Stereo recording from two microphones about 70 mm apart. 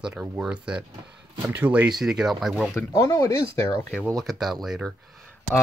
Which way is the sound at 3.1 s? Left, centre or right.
Left.